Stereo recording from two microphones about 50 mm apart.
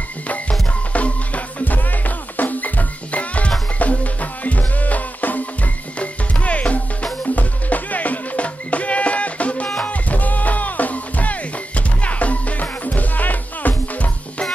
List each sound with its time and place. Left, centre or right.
0.3 s music: left